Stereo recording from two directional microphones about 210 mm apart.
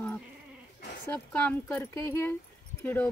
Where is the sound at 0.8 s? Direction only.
50° left (ahead or behind).